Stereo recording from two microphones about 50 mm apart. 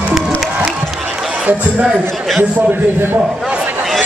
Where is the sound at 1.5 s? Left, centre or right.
Right.